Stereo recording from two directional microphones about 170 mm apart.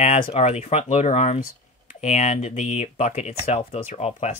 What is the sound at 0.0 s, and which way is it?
Speech, 45° left (ahead or behind).